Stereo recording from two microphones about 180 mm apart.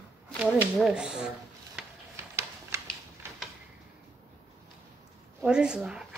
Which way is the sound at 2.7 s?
15° right (ahead or behind).